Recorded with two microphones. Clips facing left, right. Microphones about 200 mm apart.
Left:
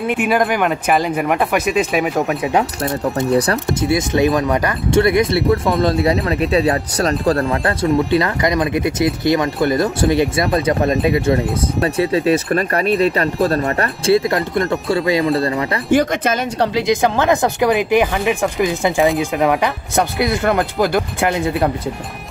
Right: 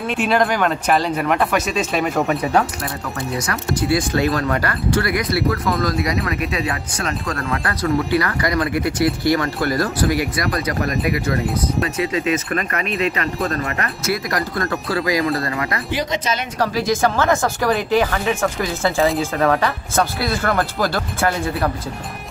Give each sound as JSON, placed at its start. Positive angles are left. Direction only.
{"t": 0.0, "sound": "speech", "side_deg": 15}
{"t": 2.5, "sound": "speech", "side_deg": 20}
{"t": 3.3, "sound": "speech", "side_deg": 35}
{"t": 3.6, "sound": "speech", "side_deg": 20}
{"t": 15.9, "sound": "speech", "side_deg": 50}
{"t": 16.5, "sound": "speech", "side_deg": 25}